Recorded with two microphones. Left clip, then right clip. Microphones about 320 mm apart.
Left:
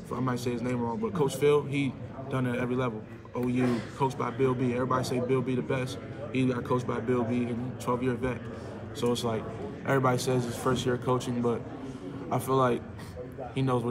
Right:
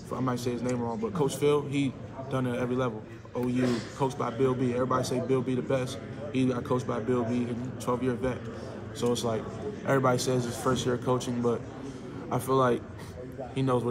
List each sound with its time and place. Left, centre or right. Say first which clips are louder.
0.1 s speech: even; centre